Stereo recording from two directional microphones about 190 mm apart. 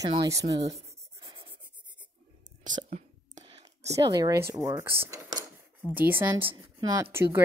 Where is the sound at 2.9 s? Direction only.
35° right (ahead or behind).